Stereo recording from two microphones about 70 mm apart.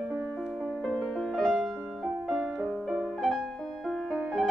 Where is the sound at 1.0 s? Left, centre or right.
Centre.